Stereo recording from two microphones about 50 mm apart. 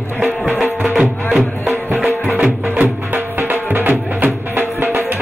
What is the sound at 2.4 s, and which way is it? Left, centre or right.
Music, right.